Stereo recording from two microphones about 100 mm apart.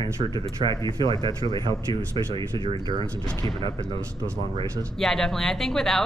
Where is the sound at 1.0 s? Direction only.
50° right (ahead or behind).